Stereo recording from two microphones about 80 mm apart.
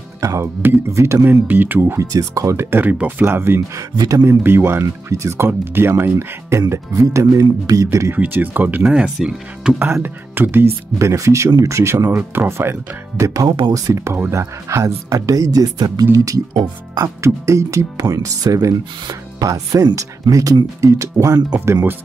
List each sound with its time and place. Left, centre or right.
0.2 s speech: right
2.0 s speech: right
2.5 s speech: right
3.9 s speech: right
4.2 s speech: right
5.1 s speech: right
8.1 s speech: right
8.8 s speech: centre
10.0 s speech: right
13.2 s speech: right
16.5 s speech: right
17.2 s speech: right